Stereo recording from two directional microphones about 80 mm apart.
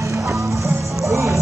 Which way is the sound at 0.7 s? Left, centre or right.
Right.